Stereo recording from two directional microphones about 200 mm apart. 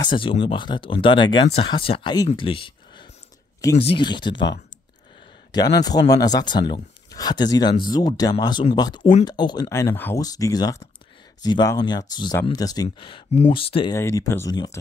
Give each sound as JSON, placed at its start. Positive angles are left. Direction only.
{"t": 0.0, "sound": "speech", "side_deg": 25}
{"t": 5.8, "sound": "speech", "side_deg": 20}
{"t": 13.9, "sound": "speech", "side_deg": 15}